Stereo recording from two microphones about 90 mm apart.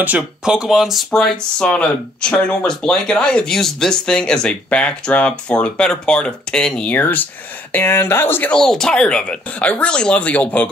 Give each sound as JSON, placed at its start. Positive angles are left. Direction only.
{"t": 0.5, "sound": "speech", "side_deg": -5}
{"t": 8.5, "sound": "speech", "side_deg": 5}